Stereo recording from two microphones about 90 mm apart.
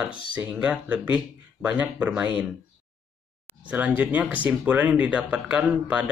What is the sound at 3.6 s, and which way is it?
Speech, 15° right (ahead or behind).